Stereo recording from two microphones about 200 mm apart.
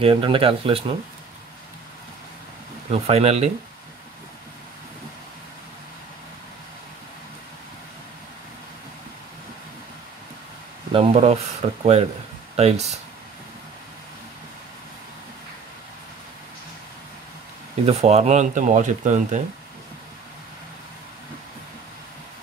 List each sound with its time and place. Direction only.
0.0 s speech: 25° right (ahead or behind)
2.9 s speech: 30° right (ahead or behind)
10.9 s speech: 30° right (ahead or behind)
17.8 s speech: 30° right (ahead or behind)